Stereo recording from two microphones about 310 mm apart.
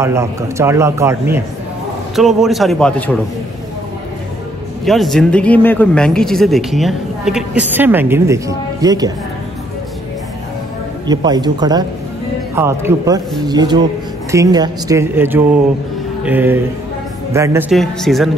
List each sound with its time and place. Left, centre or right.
0.0 s a man's voice: centre
4.8 s speech: centre
11.1 s a man's voice: centre